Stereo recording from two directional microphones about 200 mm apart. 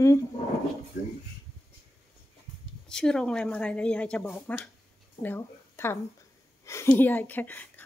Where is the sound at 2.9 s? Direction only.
5° left (ahead or behind).